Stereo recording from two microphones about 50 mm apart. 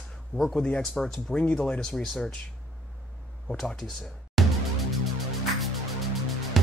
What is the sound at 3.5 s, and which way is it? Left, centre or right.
Speech, centre.